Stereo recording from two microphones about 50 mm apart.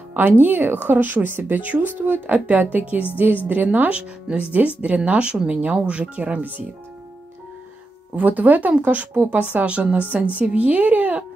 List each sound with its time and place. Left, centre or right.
0.1 s speech: right
3.9 s speech: right
8.2 s speech: right